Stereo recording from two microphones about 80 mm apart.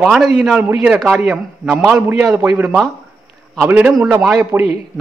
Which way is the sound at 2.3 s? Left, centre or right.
Right.